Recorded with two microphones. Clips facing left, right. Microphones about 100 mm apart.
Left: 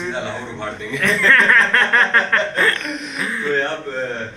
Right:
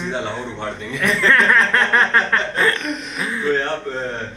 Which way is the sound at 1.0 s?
15° right (ahead or behind).